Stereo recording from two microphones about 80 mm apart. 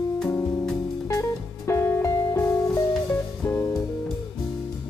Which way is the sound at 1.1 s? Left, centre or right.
Left.